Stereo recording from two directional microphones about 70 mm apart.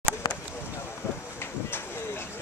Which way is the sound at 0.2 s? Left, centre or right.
Left.